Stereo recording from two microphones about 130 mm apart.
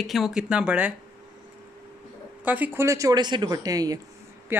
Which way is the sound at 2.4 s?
15° right (ahead or behind).